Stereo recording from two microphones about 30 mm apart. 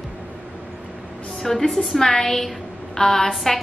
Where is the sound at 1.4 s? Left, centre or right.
Centre.